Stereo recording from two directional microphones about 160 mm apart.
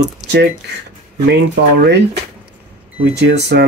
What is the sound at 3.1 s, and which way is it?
Speech, 90° right.